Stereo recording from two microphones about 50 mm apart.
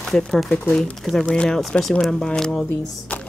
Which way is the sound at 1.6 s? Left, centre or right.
Centre.